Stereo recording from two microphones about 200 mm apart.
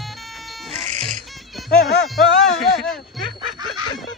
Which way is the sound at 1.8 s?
55° left (ahead or behind).